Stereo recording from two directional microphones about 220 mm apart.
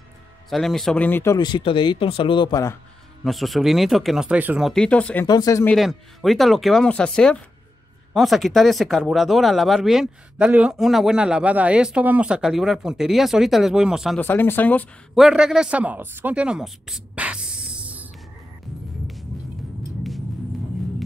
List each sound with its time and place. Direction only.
0.5 s speech: centre (ahead or behind)
3.3 s speech: centre (ahead or behind)
5.2 s speech: 15° left (ahead or behind)
5.8 s speech: centre (ahead or behind)
14.2 s speech: 10° left (ahead or behind)